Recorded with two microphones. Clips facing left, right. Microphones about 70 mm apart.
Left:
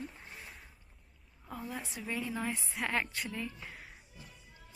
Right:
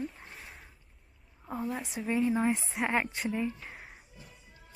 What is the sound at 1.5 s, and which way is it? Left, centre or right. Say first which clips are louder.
A woman's voice: right 6 dB; centre.